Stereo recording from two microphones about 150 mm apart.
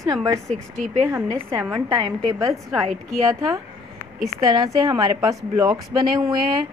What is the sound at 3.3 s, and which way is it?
A woman's voice, 20° right (ahead or behind).